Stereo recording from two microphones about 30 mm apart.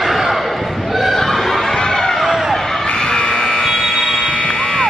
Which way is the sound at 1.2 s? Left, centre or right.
Centre.